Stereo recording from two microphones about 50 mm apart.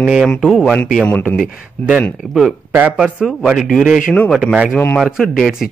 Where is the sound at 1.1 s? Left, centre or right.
Left.